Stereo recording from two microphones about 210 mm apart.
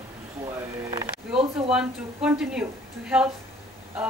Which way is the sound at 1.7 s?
5° right (ahead or behind).